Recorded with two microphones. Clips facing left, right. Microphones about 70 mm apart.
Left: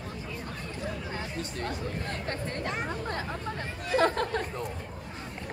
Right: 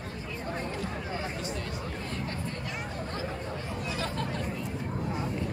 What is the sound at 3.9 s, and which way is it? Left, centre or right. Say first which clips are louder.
Chatter: left 10 dB; left.